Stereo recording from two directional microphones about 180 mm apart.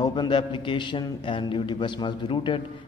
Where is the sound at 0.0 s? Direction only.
25° left (ahead or behind).